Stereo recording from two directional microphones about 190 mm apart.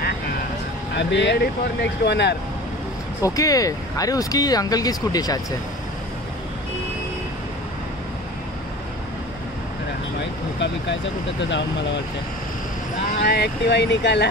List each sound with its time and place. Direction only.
0.9 s speech: 65° left (ahead or behind)
3.2 s speech: 20° left (ahead or behind)
11.4 s speech: 70° left (ahead or behind)
13.2 s speech: 60° left (ahead or behind)